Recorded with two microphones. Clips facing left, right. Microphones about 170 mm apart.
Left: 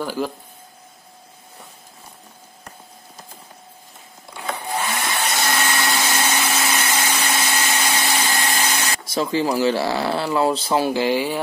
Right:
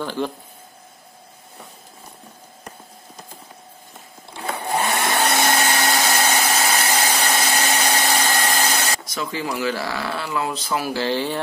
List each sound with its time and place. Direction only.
0.0 s speech: 5° left (ahead or behind)
4.7 s vacuum cleaner: 65° right (ahead or behind)
5.5 s vacuum cleaner: 40° right (ahead or behind)
9.0 s speech: 30° left (ahead or behind)
11.0 s speech: 10° left (ahead or behind)